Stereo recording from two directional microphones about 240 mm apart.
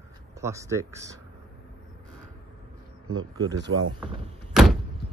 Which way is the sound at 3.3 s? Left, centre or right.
Centre.